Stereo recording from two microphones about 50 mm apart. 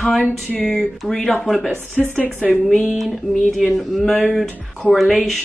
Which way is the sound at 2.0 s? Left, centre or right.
Left.